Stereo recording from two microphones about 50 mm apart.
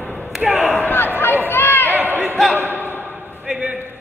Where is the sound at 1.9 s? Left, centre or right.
Right.